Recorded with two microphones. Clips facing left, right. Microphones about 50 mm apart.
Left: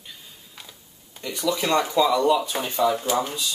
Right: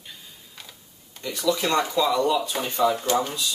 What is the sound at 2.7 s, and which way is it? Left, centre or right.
Speech, centre.